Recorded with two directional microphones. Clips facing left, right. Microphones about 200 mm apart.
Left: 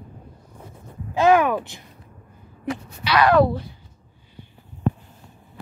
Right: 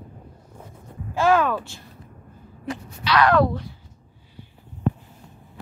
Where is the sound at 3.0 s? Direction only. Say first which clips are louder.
Left 2 dB; 5° left (ahead or behind).